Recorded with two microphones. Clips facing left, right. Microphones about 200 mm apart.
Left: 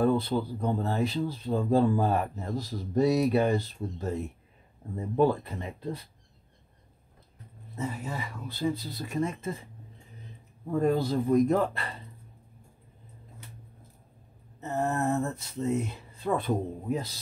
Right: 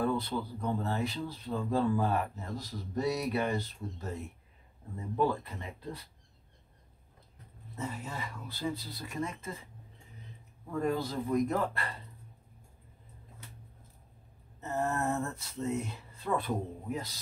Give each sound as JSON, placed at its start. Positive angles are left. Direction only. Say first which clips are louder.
{"t": 0.0, "sound": "speech", "louder": "left 6 dB", "side_deg": 25}
{"t": 7.7, "sound": "speech", "louder": "left 5 dB", "side_deg": 10}
{"t": 10.7, "sound": "speech", "louder": "left 6 dB", "side_deg": 30}
{"t": 14.6, "sound": "speech", "louder": "left 4 dB", "side_deg": 20}